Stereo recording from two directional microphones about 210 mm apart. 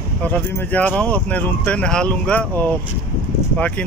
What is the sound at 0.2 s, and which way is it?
Speech, 5° left (ahead or behind).